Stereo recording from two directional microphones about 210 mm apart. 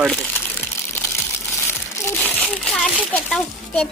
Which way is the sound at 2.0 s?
10° left (ahead or behind).